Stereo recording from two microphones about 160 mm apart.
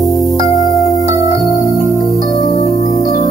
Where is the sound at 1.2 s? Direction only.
20° right (ahead or behind).